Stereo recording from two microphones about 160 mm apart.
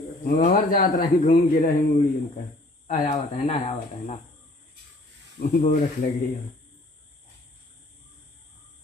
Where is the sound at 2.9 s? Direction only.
40° left (ahead or behind).